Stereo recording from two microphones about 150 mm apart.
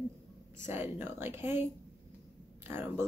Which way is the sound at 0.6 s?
15° right (ahead or behind).